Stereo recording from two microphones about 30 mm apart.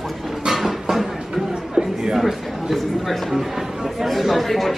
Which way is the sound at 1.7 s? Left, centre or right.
Right.